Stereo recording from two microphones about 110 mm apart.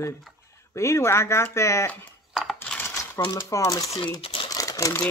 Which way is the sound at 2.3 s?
5° right (ahead or behind).